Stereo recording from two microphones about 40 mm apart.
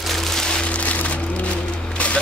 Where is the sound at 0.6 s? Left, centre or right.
Left.